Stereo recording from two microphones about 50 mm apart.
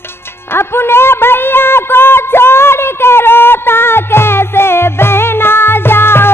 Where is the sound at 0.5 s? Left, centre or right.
Left.